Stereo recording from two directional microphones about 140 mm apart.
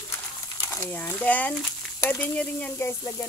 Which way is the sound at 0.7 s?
15° left (ahead or behind).